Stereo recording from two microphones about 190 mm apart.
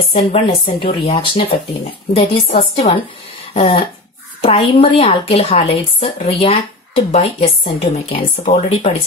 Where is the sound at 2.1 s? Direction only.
30° left (ahead or behind).